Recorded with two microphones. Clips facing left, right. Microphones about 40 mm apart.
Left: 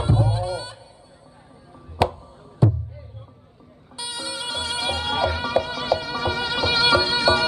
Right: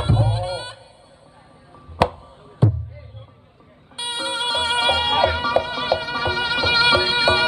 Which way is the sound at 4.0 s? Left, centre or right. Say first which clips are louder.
Right 6 dB; right.